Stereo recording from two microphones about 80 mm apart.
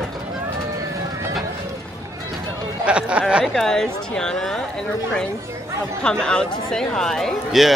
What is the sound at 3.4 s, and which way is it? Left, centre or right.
Speech, centre.